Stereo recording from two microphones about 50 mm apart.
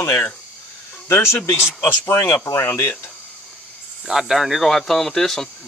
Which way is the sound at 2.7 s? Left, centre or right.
Left.